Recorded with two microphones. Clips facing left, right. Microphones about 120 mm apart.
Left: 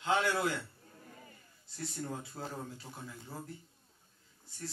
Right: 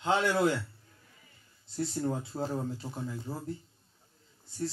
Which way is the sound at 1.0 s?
45° left (ahead or behind).